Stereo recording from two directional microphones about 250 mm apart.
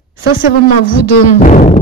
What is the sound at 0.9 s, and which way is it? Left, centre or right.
Speech, left.